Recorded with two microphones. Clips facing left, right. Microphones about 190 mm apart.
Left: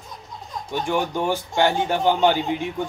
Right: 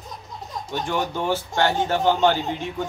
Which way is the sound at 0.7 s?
15° left (ahead or behind).